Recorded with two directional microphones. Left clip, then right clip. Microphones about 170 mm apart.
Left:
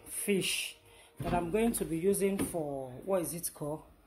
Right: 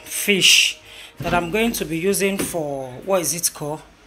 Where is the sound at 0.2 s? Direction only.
5° left (ahead or behind).